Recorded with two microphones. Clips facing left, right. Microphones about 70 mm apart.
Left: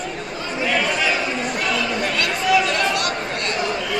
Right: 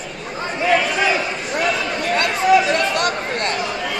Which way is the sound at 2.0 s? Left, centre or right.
Right.